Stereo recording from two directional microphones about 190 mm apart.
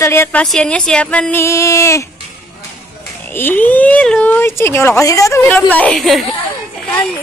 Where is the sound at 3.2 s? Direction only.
10° left (ahead or behind).